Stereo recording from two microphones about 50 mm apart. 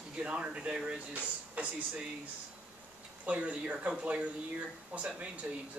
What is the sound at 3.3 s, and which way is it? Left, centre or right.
Speech, right.